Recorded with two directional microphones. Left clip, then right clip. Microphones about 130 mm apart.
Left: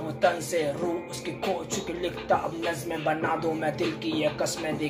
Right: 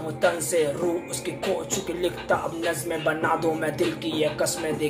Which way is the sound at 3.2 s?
20° right (ahead or behind).